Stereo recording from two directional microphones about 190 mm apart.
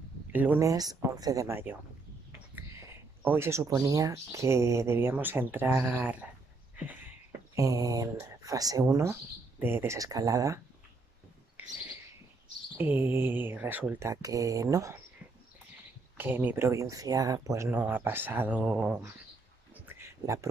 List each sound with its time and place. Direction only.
0.3 s speech: 10° right (ahead or behind)
7.5 s speech: 20° right (ahead or behind)
11.6 s bird: 10° right (ahead or behind)
12.7 s speech: 10° right (ahead or behind)
16.2 s speech: 10° right (ahead or behind)
19.7 s a sound: 10° right (ahead or behind)